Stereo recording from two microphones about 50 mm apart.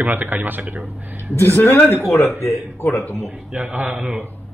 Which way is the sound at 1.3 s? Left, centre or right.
Left.